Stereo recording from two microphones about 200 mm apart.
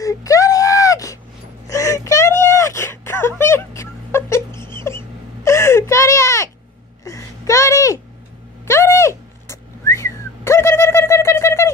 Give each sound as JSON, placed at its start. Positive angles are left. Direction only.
{"t": 0.0, "sound": "whimper", "side_deg": 15}
{"t": 1.7, "sound": "a sound", "side_deg": 15}
{"t": 8.6, "sound": "whistling", "side_deg": 15}